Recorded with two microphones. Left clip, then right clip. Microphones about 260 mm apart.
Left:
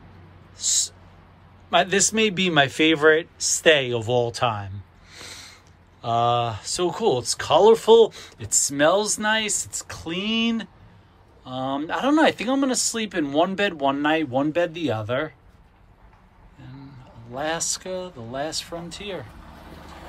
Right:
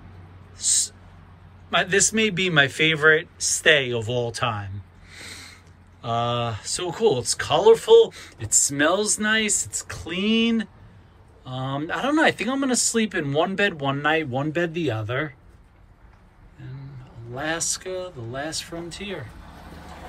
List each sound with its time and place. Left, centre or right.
0.6 s a man's voice: centre
17.3 s speech: centre